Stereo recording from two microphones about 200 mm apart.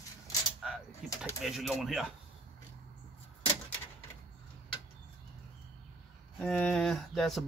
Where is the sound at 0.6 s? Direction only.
Centre (ahead or behind).